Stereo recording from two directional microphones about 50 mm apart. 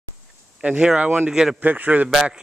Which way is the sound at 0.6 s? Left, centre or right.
Right.